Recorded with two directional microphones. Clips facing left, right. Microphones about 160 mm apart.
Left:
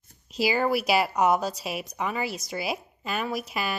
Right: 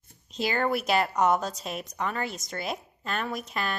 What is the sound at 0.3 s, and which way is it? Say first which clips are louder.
A woman's voice: left 3 dB; 5° left (ahead or behind).